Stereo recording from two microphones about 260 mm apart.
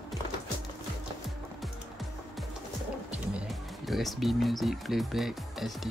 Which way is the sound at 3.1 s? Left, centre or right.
Centre.